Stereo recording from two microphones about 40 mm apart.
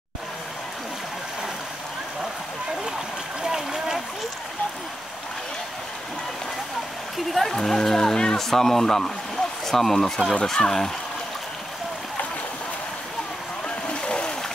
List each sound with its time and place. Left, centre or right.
3.4 s a sound: centre
7.3 s speech: centre
13.7 s boat: left